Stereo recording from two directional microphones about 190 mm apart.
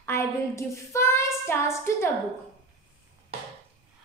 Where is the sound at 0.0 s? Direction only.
15° left (ahead or behind).